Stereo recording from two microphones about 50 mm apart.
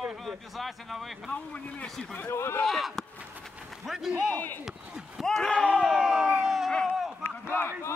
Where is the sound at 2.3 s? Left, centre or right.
Left.